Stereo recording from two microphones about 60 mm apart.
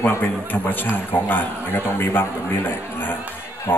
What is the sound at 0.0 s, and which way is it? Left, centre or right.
Speech, left.